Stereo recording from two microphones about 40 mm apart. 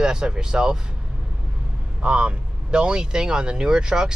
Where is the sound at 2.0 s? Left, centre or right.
Right.